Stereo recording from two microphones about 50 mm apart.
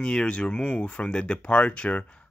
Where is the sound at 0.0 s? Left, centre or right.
Centre.